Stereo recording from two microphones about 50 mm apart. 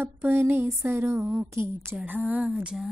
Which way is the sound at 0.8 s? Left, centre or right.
Right.